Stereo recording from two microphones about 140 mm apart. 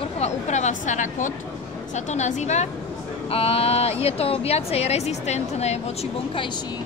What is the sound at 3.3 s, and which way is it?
A woman's voice, 45° left (ahead or behind).